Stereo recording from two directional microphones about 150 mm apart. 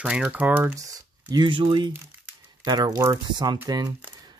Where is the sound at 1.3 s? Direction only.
30° right (ahead or behind).